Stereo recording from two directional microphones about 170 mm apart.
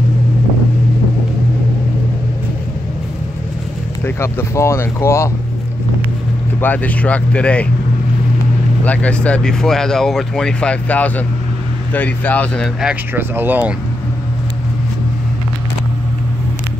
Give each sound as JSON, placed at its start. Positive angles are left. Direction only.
{"t": 4.0, "sound": "speech", "side_deg": 15}
{"t": 6.6, "sound": "speech", "side_deg": 10}
{"t": 8.8, "sound": "speech", "side_deg": 10}
{"t": 12.8, "sound": "speech", "side_deg": -10}